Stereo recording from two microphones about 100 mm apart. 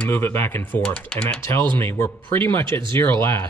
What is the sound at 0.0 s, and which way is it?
Speech, 20° left (ahead or behind).